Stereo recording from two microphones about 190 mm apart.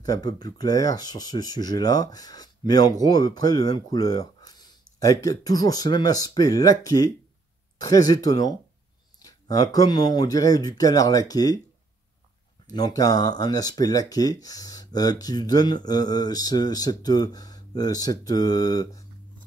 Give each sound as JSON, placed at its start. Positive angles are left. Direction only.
{"t": 0.0, "sound": "speech", "side_deg": 20}
{"t": 12.6, "sound": "speech", "side_deg": 20}